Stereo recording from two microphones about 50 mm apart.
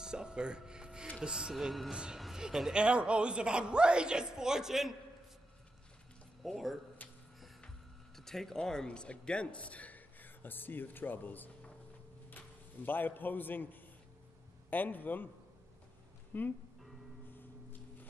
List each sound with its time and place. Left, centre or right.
0.0 s music: centre
1.5 s speech: centre
1.9 s speech: centre
2.1 s a sound: centre
2.4 s speech: centre
2.7 s a woman's voice: centre
6.4 s speech: centre
7.0 s a sound: left
8.2 s a man's voice: centre; by 15.2 s left
16.3 s speech: left